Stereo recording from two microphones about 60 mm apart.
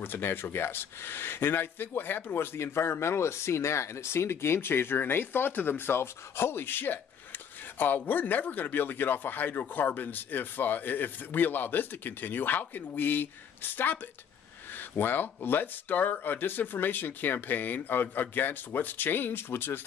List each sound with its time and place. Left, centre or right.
0.0 s speech: left